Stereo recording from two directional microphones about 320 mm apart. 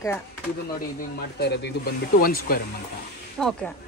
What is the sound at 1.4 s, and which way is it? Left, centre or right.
Speech, left.